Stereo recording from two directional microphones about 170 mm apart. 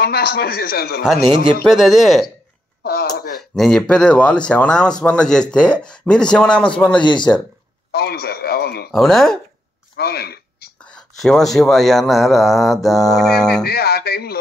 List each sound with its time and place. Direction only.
0.0 s a man's voice: 70° left (ahead or behind)
1.7 s speech: centre (ahead or behind)
2.8 s a sound: 70° left (ahead or behind)
3.3 s speech: centre (ahead or behind)
7.9 s a sound: 70° left (ahead or behind)
8.9 s speech: centre (ahead or behind)
9.9 s a sound: 65° left (ahead or behind)
10.8 s speech: 5° left (ahead or behind)
13.7 s a man's voice: 65° left (ahead or behind)